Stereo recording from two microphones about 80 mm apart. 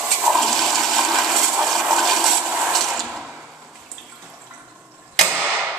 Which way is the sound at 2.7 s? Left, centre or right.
Centre.